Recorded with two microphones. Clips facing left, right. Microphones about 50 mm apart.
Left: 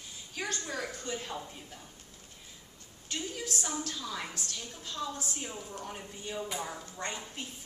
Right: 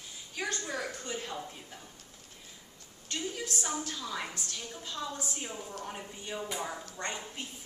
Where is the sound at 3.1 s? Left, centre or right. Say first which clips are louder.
Right 1 dB; centre.